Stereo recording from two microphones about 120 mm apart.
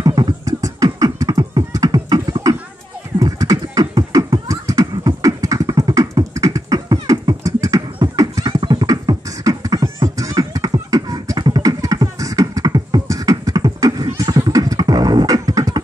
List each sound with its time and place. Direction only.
0.0 s beatboxing: 35° right (ahead or behind)